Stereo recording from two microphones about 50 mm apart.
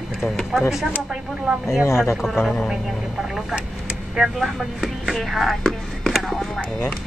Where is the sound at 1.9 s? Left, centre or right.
Left.